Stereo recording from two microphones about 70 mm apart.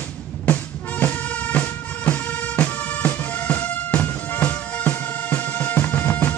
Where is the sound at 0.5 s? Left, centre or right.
Left.